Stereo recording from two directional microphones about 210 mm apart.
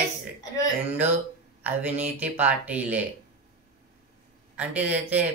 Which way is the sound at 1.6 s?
5° right (ahead or behind).